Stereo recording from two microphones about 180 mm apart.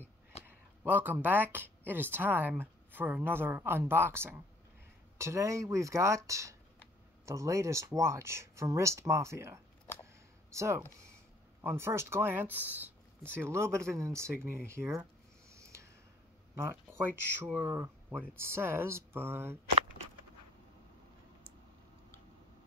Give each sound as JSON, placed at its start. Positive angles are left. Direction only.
{"t": 0.8, "sound": "speech", "side_deg": -10}
{"t": 16.5, "sound": "speech", "side_deg": -15}